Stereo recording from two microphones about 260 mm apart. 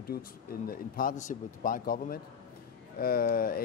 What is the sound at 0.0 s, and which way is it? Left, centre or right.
Speech, left.